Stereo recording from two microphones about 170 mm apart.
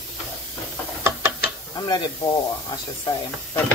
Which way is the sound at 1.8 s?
25° left (ahead or behind).